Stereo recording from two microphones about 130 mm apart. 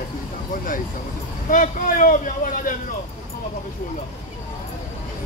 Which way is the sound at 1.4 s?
90° left.